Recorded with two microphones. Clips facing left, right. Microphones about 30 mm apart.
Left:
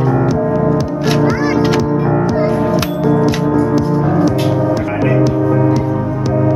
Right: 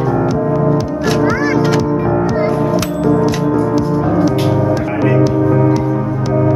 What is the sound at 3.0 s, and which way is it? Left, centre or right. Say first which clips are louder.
Music: right 1 dB; centre.